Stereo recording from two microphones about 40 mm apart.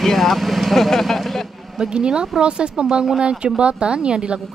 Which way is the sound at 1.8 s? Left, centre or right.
Right.